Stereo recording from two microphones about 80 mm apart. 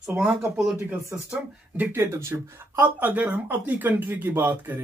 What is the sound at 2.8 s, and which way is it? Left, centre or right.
Speech, right.